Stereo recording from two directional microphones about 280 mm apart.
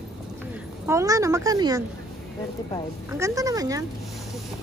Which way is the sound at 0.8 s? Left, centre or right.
Centre.